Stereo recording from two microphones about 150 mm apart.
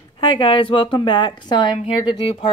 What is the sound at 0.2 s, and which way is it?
A woman's voice, 35° left (ahead or behind).